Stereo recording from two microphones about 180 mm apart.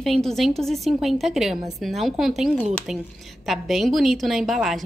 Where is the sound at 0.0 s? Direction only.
Centre (ahead or behind).